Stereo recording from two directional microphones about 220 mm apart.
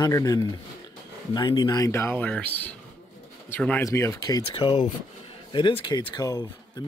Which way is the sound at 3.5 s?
10° left (ahead or behind).